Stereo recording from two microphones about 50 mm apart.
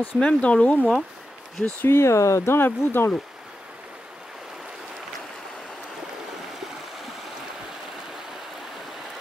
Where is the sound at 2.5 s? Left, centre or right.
Left.